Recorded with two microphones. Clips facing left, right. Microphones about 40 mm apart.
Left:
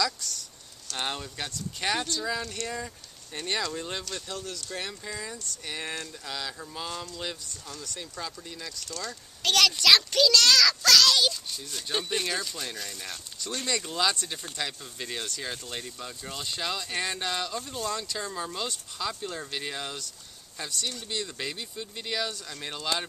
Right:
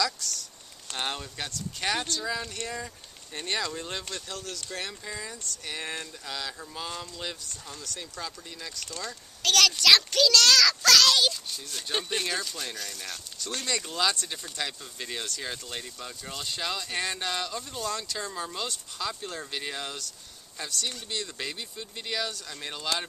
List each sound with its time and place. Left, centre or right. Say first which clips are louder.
0.2 s a child's voice: right 1 dB; centre
2.4 s a child's voice: left 1 dB; centre
8.8 s speech: even; right
9.4 s a child's voice: even; centre